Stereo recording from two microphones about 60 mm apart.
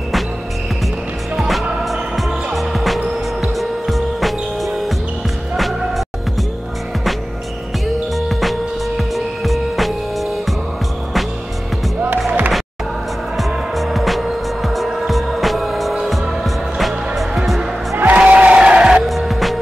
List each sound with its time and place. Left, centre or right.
1.3 s music: centre
8.3 s music: centre
12.3 s music: right
13.4 s music: centre
17.9 s crowd: right
19.0 s music: centre